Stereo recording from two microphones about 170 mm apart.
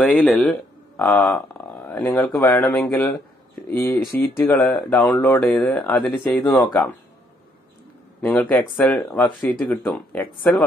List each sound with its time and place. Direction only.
0.0 s speech: 5° left (ahead or behind)
8.2 s speech: 10° left (ahead or behind)